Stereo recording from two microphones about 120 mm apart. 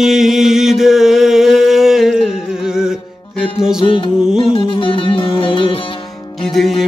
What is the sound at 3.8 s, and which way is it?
Music, 45° left (ahead or behind).